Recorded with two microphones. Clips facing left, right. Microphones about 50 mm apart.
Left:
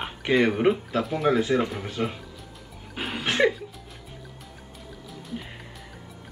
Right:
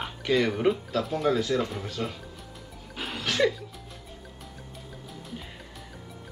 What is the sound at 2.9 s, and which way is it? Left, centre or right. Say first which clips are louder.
Music: left 3 dB; centre.